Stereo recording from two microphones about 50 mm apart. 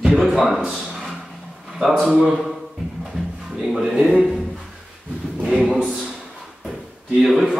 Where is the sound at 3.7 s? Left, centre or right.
Centre.